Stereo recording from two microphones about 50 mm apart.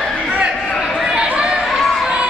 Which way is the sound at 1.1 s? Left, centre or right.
Centre.